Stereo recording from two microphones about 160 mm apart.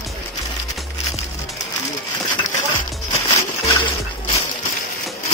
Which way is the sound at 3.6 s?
30° left (ahead or behind).